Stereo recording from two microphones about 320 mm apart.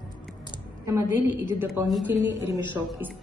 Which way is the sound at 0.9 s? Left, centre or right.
Centre.